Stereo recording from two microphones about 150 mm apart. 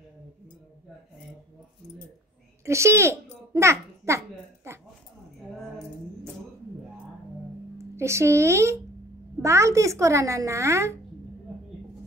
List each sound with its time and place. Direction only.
2.6 s a child's voice: 20° right (ahead or behind)
7.7 s speech: 20° right (ahead or behind)